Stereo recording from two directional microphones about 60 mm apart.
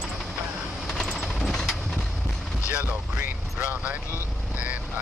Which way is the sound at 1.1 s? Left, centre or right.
Centre.